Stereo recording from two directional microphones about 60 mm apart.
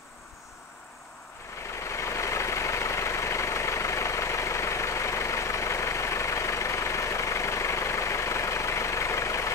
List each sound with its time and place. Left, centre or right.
1.7 s vehicle: left